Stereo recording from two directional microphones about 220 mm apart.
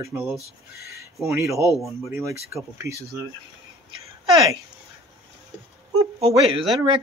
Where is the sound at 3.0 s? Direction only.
15° right (ahead or behind).